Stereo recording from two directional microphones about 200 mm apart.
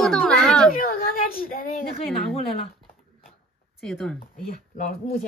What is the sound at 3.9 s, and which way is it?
Speech, centre (ahead or behind).